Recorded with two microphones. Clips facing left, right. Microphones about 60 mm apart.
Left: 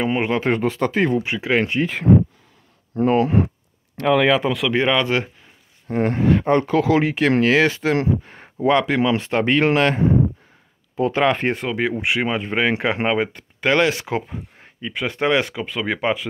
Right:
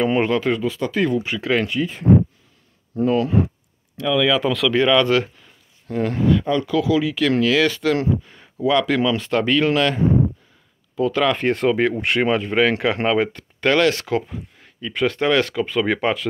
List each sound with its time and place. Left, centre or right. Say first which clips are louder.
0.0 s speech: right 3 dB; centre
0.3 s speech: even; left
0.6 s speech: left 2 dB; left
3.0 s speech: left 2 dB; left
3.9 s speech: left 2 dB; left
4.4 s speech: right 2 dB; left
5.9 s speech: left 1 dB; left
11.5 s speech: right 4 dB; centre
12.4 s speech: right 2 dB; centre